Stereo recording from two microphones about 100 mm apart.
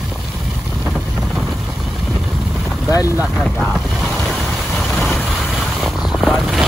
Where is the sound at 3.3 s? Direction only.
5° left (ahead or behind).